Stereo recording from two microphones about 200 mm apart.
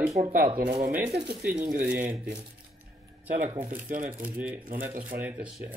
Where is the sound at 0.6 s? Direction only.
55° right (ahead or behind).